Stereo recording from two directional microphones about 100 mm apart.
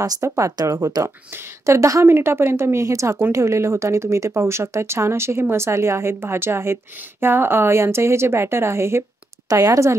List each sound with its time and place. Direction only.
0.0 s speech: 35° right (ahead or behind)